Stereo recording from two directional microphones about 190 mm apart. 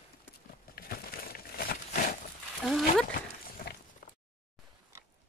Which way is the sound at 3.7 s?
55° left (ahead or behind).